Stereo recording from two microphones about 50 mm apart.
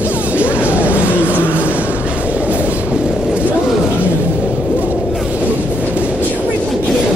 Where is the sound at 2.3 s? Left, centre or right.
Right.